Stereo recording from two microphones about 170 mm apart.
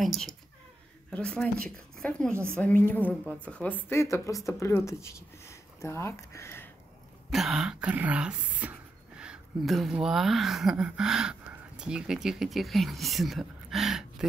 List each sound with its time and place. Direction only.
0.0 s a woman's voice: centre (ahead or behind)
7.2 s speech: centre (ahead or behind)